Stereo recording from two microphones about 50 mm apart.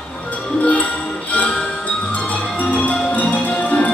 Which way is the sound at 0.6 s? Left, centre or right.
Left.